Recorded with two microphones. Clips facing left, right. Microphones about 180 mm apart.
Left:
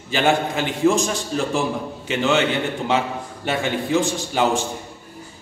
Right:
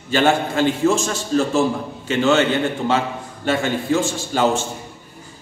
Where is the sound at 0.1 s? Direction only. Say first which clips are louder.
Right 2 dB; 15° left (ahead or behind).